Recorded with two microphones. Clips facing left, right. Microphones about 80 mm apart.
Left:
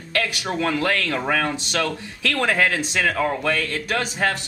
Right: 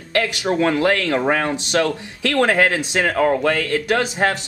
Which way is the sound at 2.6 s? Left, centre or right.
Right.